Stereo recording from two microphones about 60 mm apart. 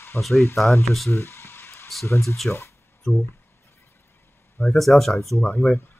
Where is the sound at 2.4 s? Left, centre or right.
Left.